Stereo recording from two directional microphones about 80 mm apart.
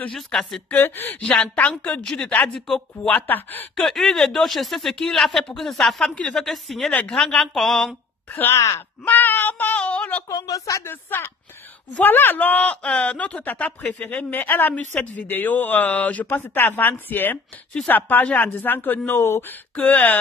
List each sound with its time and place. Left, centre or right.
0.1 s speech: centre
0.7 s speech: left
1.2 s a woman's voice: centre
3.7 s a woman's voice: centre
6.4 s speech: centre
8.5 s speech: left
9.0 s child singing: left
10.3 s speech: left
10.9 s speech: left
19.7 s speech: centre